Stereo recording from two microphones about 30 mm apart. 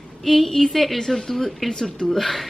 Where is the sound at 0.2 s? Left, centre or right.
Centre.